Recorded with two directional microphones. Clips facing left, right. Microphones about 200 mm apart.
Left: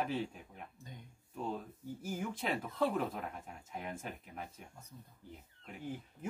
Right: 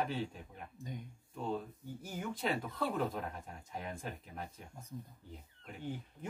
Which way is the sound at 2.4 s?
5° left (ahead or behind).